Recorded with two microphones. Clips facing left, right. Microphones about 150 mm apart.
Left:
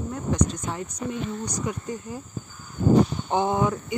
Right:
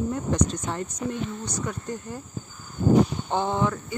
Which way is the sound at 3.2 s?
15° left (ahead or behind).